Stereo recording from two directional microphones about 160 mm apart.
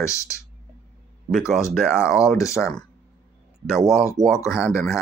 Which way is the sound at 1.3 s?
5° right (ahead or behind).